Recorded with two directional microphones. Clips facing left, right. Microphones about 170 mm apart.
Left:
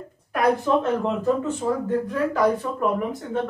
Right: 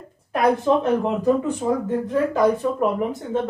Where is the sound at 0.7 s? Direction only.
20° right (ahead or behind).